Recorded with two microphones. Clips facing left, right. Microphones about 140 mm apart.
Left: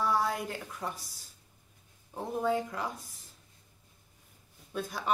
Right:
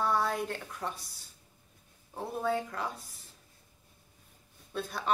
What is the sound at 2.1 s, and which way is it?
Speech, 15° left (ahead or behind).